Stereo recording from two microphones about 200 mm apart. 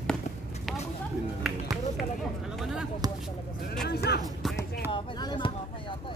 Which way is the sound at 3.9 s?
55° left (ahead or behind).